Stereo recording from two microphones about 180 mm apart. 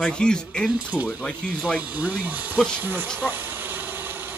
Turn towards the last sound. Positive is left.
turn(degrees=-10)  # may be behind; listen again after turning